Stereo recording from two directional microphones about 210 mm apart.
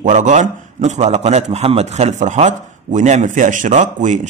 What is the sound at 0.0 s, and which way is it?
A man's voice, 35° right (ahead or behind).